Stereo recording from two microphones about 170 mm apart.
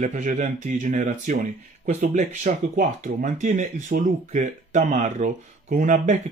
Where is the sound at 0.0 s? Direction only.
45° right (ahead or behind).